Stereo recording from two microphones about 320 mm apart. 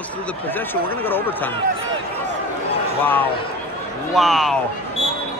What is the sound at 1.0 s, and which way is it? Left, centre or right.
Speech, centre.